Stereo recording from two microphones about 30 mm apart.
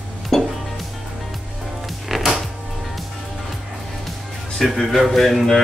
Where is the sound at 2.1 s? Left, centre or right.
Centre.